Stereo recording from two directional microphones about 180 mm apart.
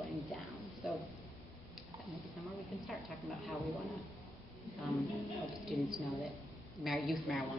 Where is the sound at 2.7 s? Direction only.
Centre (ahead or behind).